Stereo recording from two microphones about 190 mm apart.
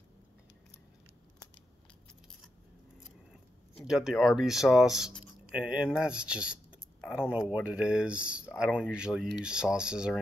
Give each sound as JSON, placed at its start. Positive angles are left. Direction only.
{"t": 3.8, "sound": "speech", "side_deg": 0}